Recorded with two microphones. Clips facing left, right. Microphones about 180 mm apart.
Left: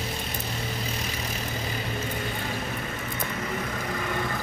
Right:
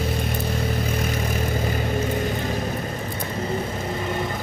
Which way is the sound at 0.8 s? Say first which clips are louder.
Right 8 dB; 55° right (ahead or behind).